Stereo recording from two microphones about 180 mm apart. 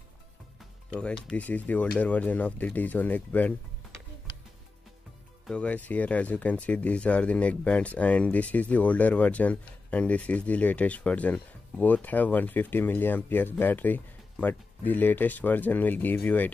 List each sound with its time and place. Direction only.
0.9 s speech: 5° left (ahead or behind)
5.5 s speech: 5° left (ahead or behind)